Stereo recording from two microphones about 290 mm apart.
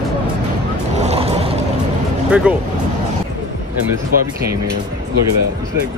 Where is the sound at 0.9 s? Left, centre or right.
Right.